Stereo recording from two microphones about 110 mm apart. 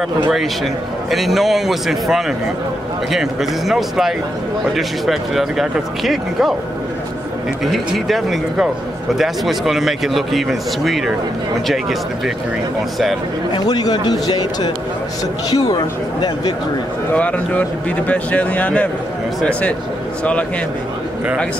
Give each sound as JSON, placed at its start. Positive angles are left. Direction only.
{"t": 1.1, "sound": "speech", "side_deg": 0}
{"t": 7.6, "sound": "speech", "side_deg": 0}
{"t": 13.5, "sound": "speech", "side_deg": 40}
{"t": 17.1, "sound": "speech", "side_deg": 15}